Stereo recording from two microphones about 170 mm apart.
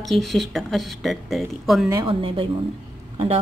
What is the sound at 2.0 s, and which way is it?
Speech, 30° right (ahead or behind).